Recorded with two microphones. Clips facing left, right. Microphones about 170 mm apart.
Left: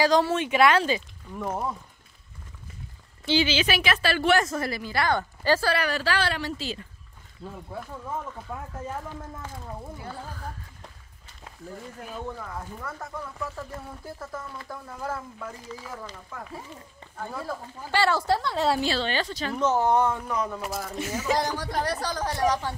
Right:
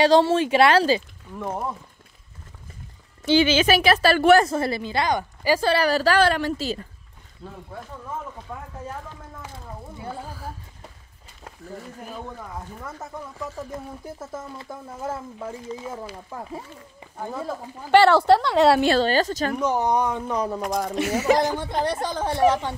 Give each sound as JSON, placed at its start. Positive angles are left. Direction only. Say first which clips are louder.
{"t": 0.0, "sound": "speech", "louder": "right 5 dB", "side_deg": -30}
{"t": 1.4, "sound": "speech", "louder": "right 1 dB", "side_deg": 0}
{"t": 3.3, "sound": "a woman's voice", "louder": "right 6 dB", "side_deg": -50}
{"t": 5.7, "sound": "a woman's voice", "louder": "right 6 dB", "side_deg": -35}
{"t": 8.5, "sound": "speech", "louder": "left 1 dB", "side_deg": 5}
{"t": 12.8, "sound": "speech", "louder": "right 1 dB", "side_deg": -20}
{"t": 17.9, "sound": "a woman's voice", "louder": "right 9 dB", "side_deg": -65}
{"t": 18.9, "sound": "a woman's voice", "louder": "right 8 dB", "side_deg": -40}
{"t": 19.5, "sound": "speech", "louder": "left 2 dB", "side_deg": -15}
{"t": 20.2, "sound": "a woman's voice", "louder": "right 4 dB", "side_deg": -35}
{"t": 20.8, "sound": "a woman's voice", "louder": "right 9 dB", "side_deg": -70}
{"t": 21.4, "sound": "speech", "louder": "right 4 dB", "side_deg": -25}